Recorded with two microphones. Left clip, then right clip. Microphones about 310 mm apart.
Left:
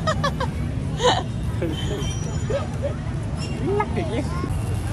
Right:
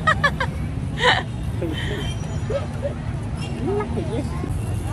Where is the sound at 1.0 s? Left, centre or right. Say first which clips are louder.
Right 2 dB; centre.